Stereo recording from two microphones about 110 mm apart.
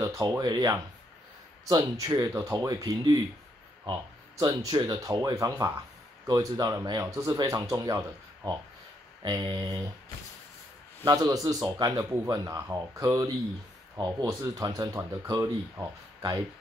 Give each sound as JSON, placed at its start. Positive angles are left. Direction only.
{"t": 0.0, "sound": "speech", "side_deg": -25}
{"t": 0.4, "sound": "speech", "side_deg": -40}
{"t": 9.2, "sound": "speech", "side_deg": -45}
{"t": 11.2, "sound": "speech", "side_deg": -30}